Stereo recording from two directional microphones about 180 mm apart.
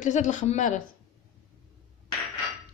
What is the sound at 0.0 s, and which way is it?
Speech, 40° left (ahead or behind).